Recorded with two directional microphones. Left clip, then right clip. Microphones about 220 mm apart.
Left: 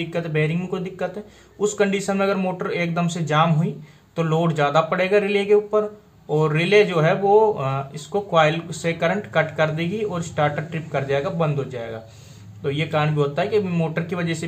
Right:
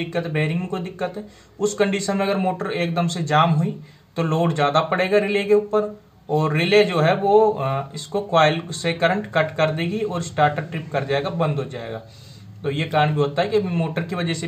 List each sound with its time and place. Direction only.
0.0 s speech: 5° left (ahead or behind)